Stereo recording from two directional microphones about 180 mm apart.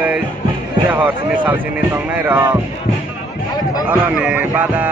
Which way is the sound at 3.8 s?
5° right (ahead or behind).